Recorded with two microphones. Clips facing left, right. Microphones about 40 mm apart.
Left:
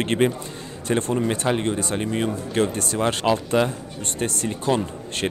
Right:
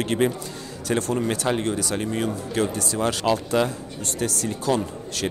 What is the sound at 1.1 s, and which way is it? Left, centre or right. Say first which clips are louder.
Speech: left 1 dB; centre.